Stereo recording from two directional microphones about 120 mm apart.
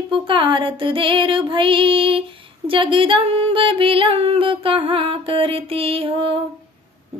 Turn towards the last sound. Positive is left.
turn(degrees=-50)  # may be behind; listen again after turning